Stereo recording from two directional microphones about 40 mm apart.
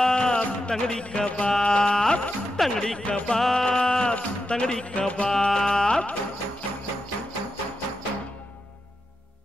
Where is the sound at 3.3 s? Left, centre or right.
Centre.